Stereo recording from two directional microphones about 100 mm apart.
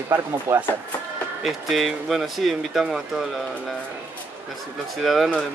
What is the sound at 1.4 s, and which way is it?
Speech, centre (ahead or behind).